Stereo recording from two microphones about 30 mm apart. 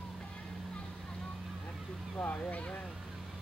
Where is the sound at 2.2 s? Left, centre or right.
Left.